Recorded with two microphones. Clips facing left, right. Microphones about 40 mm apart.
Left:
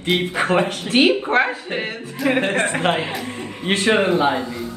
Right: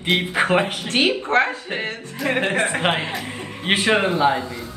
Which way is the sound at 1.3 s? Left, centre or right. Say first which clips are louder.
Left 1 dB; centre.